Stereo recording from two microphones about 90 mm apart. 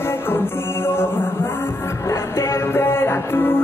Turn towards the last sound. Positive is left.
turn(degrees=25)  # may be behind; listen again after turning